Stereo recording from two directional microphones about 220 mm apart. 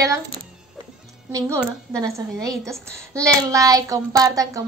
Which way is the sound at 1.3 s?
15° right (ahead or behind).